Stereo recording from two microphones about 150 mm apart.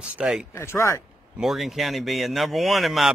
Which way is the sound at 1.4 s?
Centre (ahead or behind).